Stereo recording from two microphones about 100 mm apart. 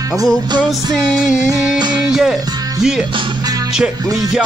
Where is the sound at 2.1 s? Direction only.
5° right (ahead or behind).